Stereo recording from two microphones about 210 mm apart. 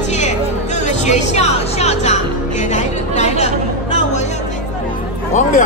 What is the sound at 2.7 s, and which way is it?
Chatter, 35° left (ahead or behind).